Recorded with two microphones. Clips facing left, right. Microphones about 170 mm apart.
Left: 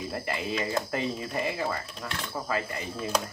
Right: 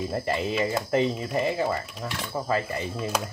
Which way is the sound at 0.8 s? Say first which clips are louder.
Right 7 dB; 30° right (ahead or behind).